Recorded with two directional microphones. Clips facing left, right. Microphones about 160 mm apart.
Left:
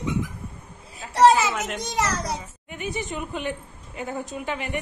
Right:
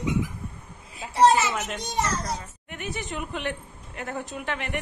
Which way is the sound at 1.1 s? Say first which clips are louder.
Left 2 dB; 90° left.